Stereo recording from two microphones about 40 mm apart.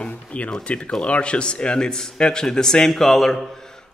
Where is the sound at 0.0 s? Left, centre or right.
Left.